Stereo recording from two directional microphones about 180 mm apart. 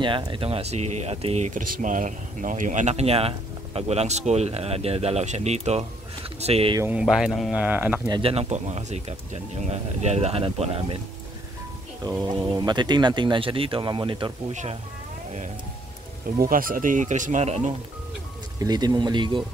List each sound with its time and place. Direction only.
0.0 s speech: 25° right (ahead or behind)
6.8 s speech: 5° right (ahead or behind)
8.1 s speech: 30° right (ahead or behind)
12.0 s speech: 20° right (ahead or behind)
14.5 s speech: 40° right (ahead or behind)
16.3 s speech: 50° right (ahead or behind)
18.6 s speech: 20° right (ahead or behind)